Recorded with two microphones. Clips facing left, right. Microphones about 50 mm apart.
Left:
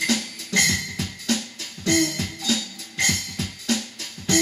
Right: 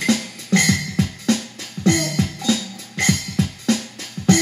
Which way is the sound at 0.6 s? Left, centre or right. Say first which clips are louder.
Right 4 dB; right.